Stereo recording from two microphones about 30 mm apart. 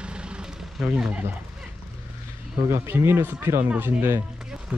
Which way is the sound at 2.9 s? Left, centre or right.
Right.